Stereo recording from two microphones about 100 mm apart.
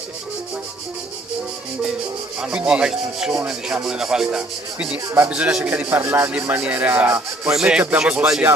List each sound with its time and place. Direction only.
2.4 s speech: 10° right (ahead or behind)
7.5 s speech: 10° right (ahead or behind)